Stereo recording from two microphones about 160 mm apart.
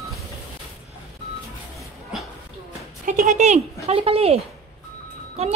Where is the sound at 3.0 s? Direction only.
55° right (ahead or behind); by 4.4 s 40° right (ahead or behind).